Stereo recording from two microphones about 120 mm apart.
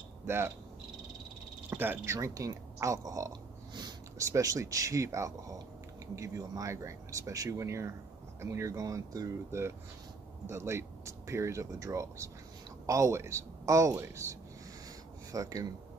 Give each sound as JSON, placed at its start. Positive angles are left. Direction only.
{"t": 0.3, "sound": "speech", "side_deg": -20}
{"t": 1.7, "sound": "speech", "side_deg": -20}
{"t": 15.3, "sound": "speech", "side_deg": -30}